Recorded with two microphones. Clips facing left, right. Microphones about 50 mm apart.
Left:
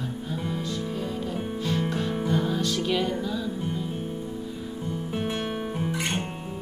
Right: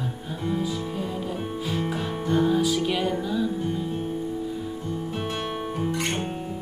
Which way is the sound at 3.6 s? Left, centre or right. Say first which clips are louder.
Right 3 dB; centre.